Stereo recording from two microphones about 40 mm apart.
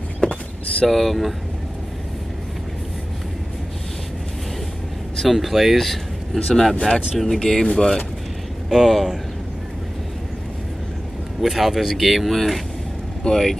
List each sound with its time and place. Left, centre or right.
0.2 s a sound: left
0.8 s speech: centre
5.1 s speech: centre
8.6 s speech: centre
11.4 s speech: centre